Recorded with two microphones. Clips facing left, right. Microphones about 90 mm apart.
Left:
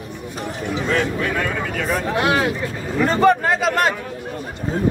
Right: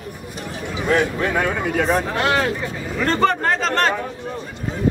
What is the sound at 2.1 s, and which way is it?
Speech, 10° left (ahead or behind).